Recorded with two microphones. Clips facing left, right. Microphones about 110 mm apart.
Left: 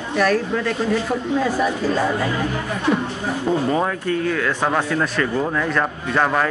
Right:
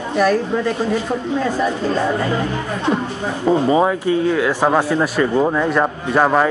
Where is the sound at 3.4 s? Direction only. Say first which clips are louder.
Right 6 dB; 15° right (ahead or behind).